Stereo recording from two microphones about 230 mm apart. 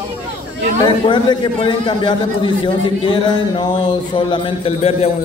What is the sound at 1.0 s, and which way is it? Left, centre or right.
A man's voice, left.